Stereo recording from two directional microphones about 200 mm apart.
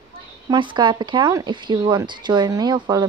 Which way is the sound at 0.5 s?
25° right (ahead or behind).